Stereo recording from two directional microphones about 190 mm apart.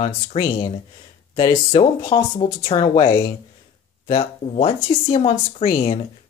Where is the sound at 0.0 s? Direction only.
25° left (ahead or behind).